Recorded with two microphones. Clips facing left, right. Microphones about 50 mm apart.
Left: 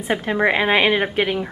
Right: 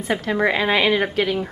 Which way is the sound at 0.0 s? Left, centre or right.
Left.